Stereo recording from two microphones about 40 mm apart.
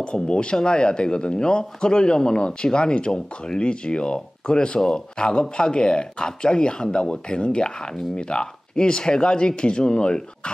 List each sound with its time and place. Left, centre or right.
0.0 s speech: left